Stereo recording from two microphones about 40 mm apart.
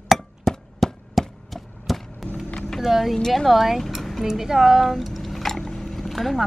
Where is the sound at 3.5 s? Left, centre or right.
Centre.